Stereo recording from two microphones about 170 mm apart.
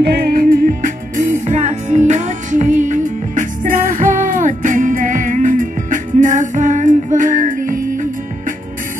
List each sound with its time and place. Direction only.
0.0 s music: 75° right (ahead or behind); by 8.5 s 50° right (ahead or behind)